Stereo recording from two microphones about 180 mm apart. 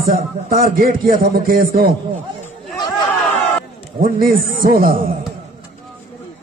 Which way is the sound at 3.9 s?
50° right (ahead or behind).